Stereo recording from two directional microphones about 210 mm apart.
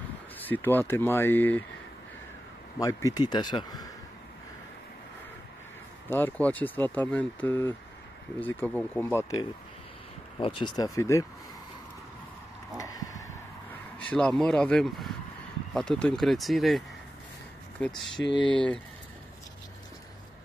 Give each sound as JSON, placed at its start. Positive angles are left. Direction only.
{"t": 0.5, "sound": "speech", "side_deg": 10}
{"t": 2.8, "sound": "speech", "side_deg": 15}
{"t": 6.0, "sound": "speech", "side_deg": 10}
{"t": 10.4, "sound": "speech", "side_deg": 25}
{"t": 12.7, "sound": "a sound", "side_deg": 15}
{"t": 14.1, "sound": "speech", "side_deg": 5}